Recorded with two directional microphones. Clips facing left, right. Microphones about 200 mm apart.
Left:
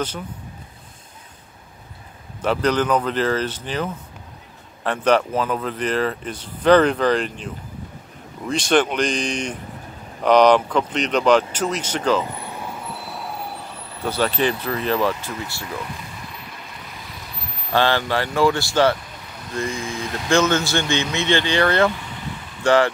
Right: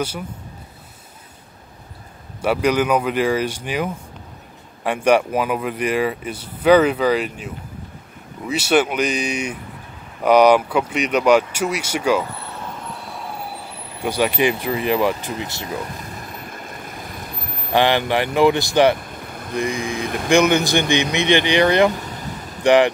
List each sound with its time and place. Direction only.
2.4 s speech: 10° right (ahead or behind)
12.3 s vehicle: 15° left (ahead or behind)
13.9 s speech: 15° right (ahead or behind)
15.7 s vehicle: 45° right (ahead or behind)
17.7 s speech: 15° right (ahead or behind)
18.9 s vehicle: 50° right (ahead or behind)
19.5 s speech: 15° right (ahead or behind)
21.9 s vehicle: 40° right (ahead or behind)
22.6 s speech: 15° right (ahead or behind)